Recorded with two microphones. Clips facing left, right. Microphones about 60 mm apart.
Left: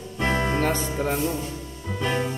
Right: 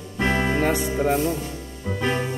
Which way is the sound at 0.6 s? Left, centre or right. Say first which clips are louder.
Right 3 dB; centre.